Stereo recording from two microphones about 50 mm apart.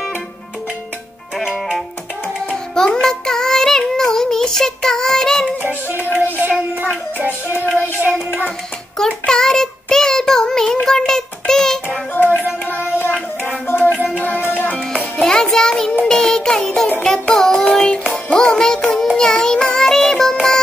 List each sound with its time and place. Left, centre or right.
1.4 s music: centre
2.5 s music: centre
6.9 s child singing: left
8.9 s child singing: centre
12.1 s music: left
14.1 s music: left
15.1 s music: centre
17.0 s child singing: centre
18.1 s music: centre